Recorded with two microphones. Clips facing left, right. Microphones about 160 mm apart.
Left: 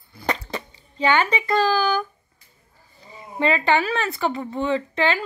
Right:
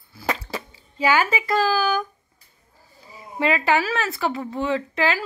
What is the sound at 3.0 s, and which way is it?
A woman's voice, 5° right (ahead or behind).